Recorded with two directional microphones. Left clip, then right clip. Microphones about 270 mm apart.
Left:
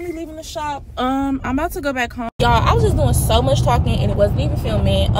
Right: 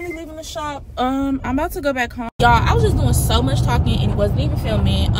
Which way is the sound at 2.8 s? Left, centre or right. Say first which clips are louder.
Left 2 dB; centre.